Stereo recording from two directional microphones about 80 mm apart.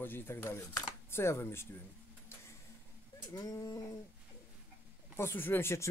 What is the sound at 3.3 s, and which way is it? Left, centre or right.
Speech, left.